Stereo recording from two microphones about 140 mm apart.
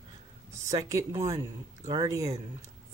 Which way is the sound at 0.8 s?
25° right (ahead or behind).